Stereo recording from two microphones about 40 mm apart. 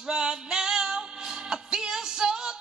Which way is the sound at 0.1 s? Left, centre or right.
Centre.